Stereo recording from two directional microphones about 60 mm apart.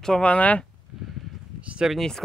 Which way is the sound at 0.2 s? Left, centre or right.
Left.